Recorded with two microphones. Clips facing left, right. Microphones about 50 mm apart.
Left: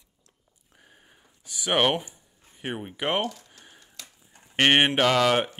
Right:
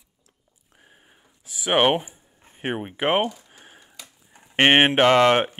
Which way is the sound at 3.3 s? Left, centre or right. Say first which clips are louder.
Right 2 dB; centre.